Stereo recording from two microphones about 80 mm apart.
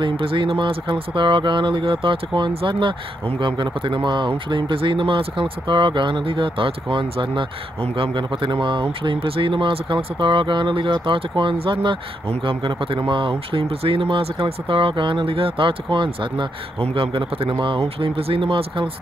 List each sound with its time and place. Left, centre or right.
0.0 s speech: right